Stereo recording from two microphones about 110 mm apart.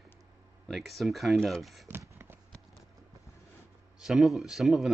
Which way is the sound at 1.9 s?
20° right (ahead or behind).